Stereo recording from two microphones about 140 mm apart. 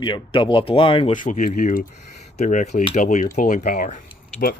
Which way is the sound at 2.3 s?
60° left (ahead or behind).